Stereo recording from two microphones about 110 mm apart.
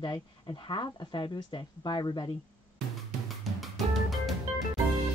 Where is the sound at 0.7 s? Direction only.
45° left (ahead or behind).